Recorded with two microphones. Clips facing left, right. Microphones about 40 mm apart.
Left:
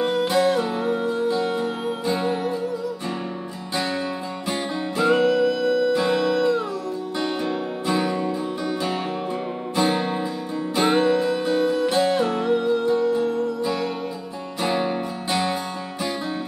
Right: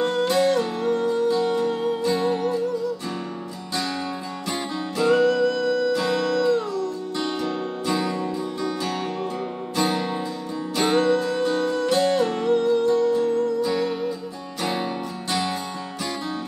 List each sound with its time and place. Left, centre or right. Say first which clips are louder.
0.0 s music: even; centre
4.5 s music: left 2 dB; centre